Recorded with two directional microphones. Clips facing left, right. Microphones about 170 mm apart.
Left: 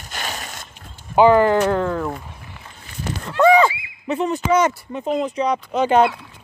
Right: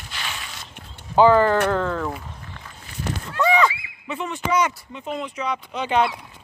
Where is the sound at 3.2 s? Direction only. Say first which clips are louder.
Left 8 dB; 60° left (ahead or behind).